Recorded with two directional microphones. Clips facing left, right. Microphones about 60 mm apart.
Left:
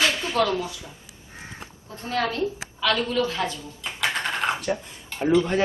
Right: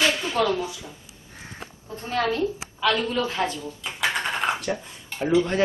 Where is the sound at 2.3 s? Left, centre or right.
Centre.